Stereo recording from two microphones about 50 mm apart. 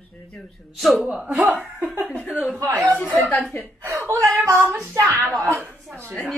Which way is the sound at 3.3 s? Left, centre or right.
Left.